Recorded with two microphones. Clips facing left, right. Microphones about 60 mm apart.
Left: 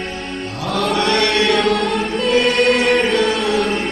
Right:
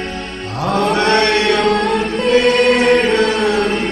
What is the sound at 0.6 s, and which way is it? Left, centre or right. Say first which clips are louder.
Mantra: right 5 dB; right.